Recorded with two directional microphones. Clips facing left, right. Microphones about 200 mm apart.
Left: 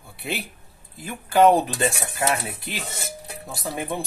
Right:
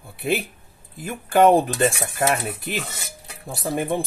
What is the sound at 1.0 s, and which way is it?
Speech, 50° right (ahead or behind).